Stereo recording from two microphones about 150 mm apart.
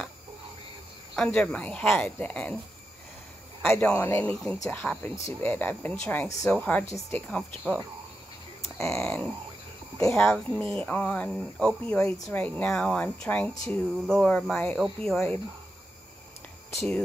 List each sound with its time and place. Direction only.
1.1 s speech: 10° left (ahead or behind)
3.6 s speech: 15° left (ahead or behind)
8.7 s speech: 15° left (ahead or behind)
9.9 s speech: 5° left (ahead or behind)